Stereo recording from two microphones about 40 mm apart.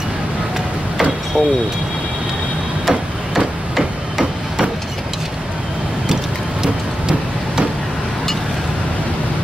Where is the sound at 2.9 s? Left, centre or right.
Centre.